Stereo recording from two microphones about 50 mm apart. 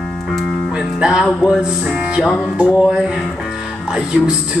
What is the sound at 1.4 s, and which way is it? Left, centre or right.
Speech, centre.